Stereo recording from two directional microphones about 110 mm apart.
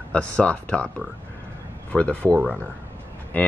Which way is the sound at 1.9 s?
15° left (ahead or behind).